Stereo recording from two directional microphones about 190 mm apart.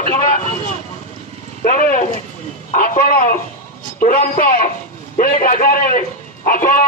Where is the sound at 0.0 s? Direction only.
45° left (ahead or behind).